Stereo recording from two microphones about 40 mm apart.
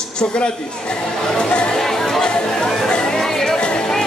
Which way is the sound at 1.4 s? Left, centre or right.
Left.